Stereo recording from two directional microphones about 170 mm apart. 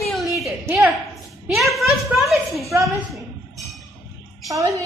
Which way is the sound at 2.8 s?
Centre (ahead or behind).